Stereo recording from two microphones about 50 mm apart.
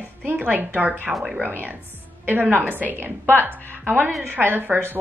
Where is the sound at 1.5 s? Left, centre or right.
Right.